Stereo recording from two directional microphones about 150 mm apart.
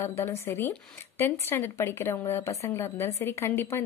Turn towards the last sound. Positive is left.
turn(degrees=15)  # may be behind; listen again after turning